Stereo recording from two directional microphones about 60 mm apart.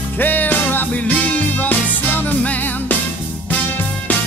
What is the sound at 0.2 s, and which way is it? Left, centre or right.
Music, left.